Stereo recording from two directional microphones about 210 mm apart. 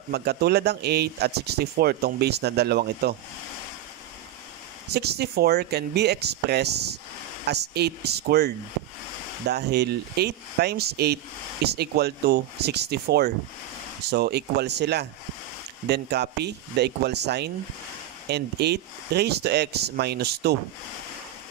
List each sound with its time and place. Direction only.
0.1 s speech: 50° right (ahead or behind)
4.9 s speech: 50° right (ahead or behind)
9.5 s speech: 50° right (ahead or behind)